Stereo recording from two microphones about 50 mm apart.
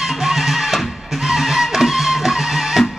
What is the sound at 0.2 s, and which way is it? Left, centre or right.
Music, centre.